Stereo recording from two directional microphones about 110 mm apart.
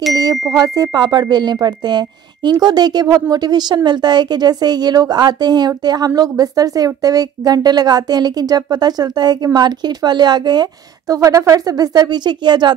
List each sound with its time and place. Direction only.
0.1 s ding: 35° right (ahead or behind)
0.5 s speech: 35° right (ahead or behind)